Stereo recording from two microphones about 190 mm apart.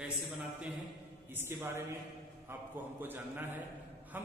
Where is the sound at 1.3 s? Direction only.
10° right (ahead or behind).